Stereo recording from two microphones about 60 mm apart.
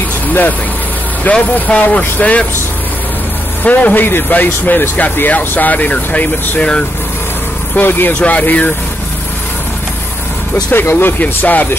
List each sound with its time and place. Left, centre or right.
0.3 s speech: left
3.6 s speech: left
7.7 s speech: left
10.7 s speech: left